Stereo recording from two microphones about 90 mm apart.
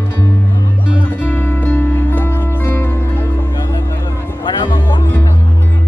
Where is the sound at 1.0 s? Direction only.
25° left (ahead or behind).